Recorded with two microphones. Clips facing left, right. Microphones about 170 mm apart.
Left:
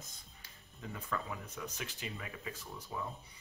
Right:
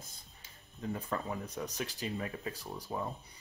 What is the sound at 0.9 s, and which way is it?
Speech, 35° right (ahead or behind).